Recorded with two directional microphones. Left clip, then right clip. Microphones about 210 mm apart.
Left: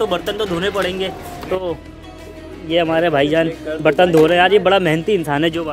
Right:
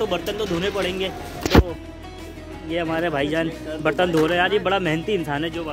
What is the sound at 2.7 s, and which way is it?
A man's voice, 15° left (ahead or behind).